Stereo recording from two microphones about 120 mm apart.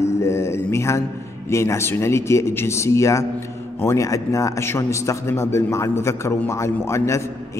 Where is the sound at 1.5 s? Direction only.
25° left (ahead or behind).